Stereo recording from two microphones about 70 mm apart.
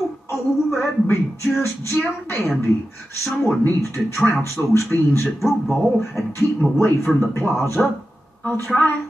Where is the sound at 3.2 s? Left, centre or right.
Centre.